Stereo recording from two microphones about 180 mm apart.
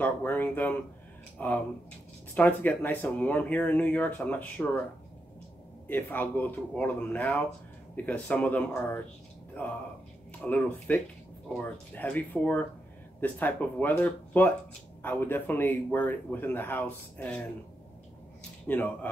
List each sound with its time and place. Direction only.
0.0 s speech: 10° left (ahead or behind)
5.9 s speech: 10° left (ahead or behind)
10.4 s speech: 10° left (ahead or behind)
18.7 s speech: 10° left (ahead or behind)